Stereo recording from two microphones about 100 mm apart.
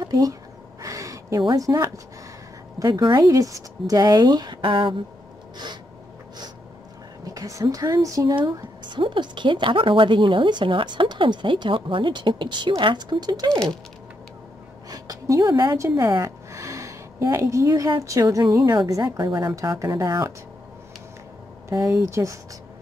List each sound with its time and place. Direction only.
0.0 s speech: 35° right (ahead or behind)
0.8 s a sound: 35° right (ahead or behind)
1.6 s speech: 35° right (ahead or behind)
2.8 s a woman's voice: 50° right (ahead or behind)
7.2 s a woman's voice: 35° right (ahead or behind)
14.9 s speech: 35° right (ahead or behind)
19.5 s speech: 30° right (ahead or behind)
21.6 s speech: 30° right (ahead or behind)